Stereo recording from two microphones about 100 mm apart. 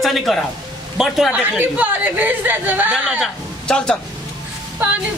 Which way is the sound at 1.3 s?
15° right (ahead or behind).